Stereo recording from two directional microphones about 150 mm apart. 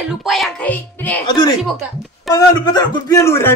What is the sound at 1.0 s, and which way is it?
Speech, 10° left (ahead or behind).